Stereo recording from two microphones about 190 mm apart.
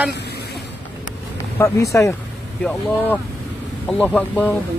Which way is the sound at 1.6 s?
15° left (ahead or behind).